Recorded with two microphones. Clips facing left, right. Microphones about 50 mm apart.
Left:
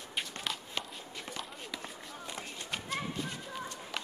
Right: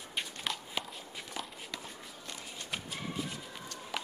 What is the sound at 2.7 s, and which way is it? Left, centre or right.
Bird, centre.